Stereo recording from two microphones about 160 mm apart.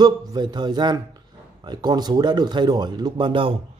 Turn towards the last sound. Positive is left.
turn(degrees=-35)  # may be behind; listen again after turning